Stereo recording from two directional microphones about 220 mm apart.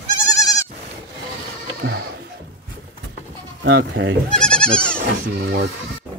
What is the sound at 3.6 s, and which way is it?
Speech, 50° right (ahead or behind).